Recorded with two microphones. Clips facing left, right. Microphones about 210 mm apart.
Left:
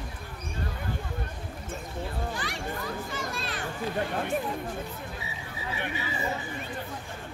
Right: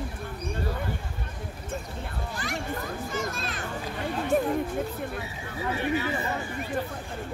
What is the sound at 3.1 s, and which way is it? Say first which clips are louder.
Speech: right 3 dB; 45° right (ahead or behind).